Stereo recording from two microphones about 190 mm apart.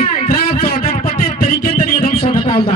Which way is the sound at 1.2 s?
50° left (ahead or behind).